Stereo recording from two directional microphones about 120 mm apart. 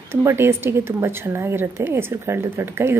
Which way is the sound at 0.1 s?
20° right (ahead or behind).